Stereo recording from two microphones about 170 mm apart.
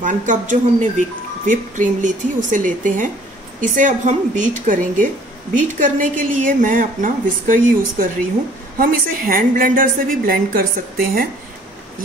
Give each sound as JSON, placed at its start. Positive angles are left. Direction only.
{"t": 0.0, "sound": "a woman's voice", "side_deg": -50}